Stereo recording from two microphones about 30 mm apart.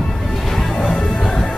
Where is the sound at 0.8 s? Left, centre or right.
Centre.